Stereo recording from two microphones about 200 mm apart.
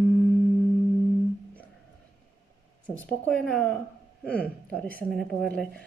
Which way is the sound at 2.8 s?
5° left (ahead or behind).